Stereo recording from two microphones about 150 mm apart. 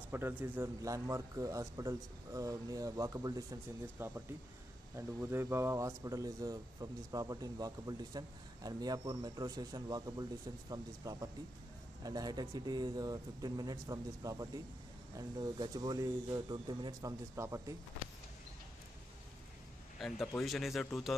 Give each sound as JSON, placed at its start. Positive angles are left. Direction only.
{"t": 0.1, "sound": "a man's voice", "side_deg": -15}
{"t": 20.0, "sound": "a man's voice", "side_deg": 0}